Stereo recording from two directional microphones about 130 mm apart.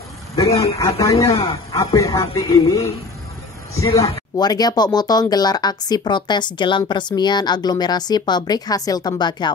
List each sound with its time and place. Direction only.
0.4 s a man's voice: 25° left (ahead or behind)